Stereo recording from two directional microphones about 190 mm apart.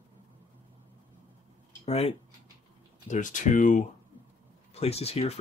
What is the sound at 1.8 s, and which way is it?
Speech, 35° left (ahead or behind).